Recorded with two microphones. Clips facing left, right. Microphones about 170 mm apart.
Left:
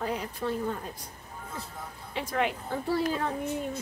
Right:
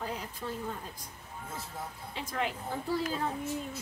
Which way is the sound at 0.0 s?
70° left (ahead or behind).